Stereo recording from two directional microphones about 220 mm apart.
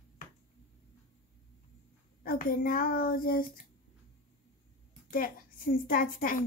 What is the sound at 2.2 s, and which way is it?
Speech, 40° left (ahead or behind).